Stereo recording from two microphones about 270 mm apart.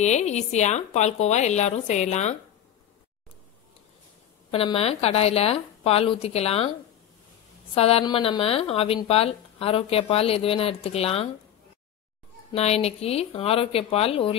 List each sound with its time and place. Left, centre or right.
0.0 s speech: left
4.5 s speech: left
7.7 s speech: left
12.5 s speech: left